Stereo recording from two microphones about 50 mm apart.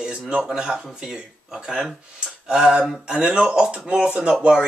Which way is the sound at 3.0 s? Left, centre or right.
Right.